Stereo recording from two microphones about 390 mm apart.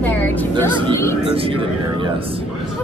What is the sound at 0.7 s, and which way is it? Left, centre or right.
Speech, centre.